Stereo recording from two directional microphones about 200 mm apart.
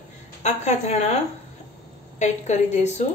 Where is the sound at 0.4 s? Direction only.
35° left (ahead or behind).